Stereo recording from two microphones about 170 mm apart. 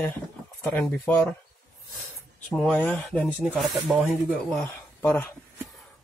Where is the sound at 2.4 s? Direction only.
5° left (ahead or behind).